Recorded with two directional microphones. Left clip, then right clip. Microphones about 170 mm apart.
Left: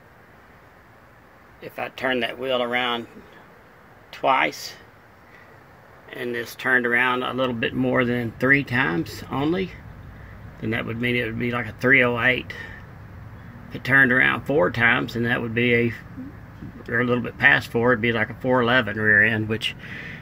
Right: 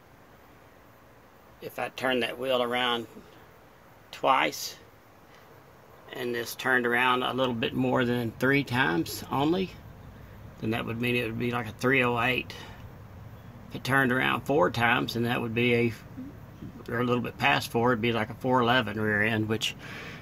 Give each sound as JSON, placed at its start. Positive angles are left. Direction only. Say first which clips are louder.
{"t": 1.6, "sound": "speech", "louder": "left 4 dB", "side_deg": -25}
{"t": 4.2, "sound": "speech", "louder": "left 4 dB", "side_deg": -20}
{"t": 6.0, "sound": "speech", "louder": "left 3 dB", "side_deg": -15}
{"t": 10.6, "sound": "speech", "louder": "left 5 dB", "side_deg": -15}
{"t": 13.8, "sound": "speech", "louder": "left 8 dB", "side_deg": -15}
{"t": 16.9, "sound": "speech", "louder": "left 6 dB", "side_deg": -10}